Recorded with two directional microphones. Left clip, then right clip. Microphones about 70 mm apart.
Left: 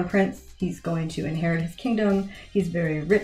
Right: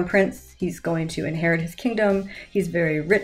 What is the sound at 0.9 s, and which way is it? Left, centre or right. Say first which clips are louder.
Speech: right 3 dB; right.